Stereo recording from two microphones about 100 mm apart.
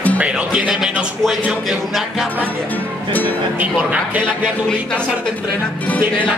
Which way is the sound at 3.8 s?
15° right (ahead or behind).